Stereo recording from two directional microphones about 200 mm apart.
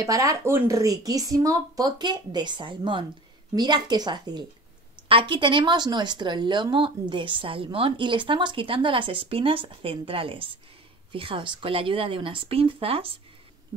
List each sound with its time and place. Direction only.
0.0 s a woman's voice: 15° right (ahead or behind)